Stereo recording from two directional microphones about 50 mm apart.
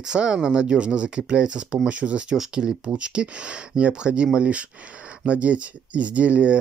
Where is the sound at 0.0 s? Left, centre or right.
Centre.